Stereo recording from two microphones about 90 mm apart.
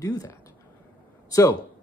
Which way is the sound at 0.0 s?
40° left (ahead or behind).